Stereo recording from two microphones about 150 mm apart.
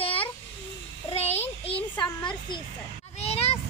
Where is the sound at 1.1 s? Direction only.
45° left (ahead or behind).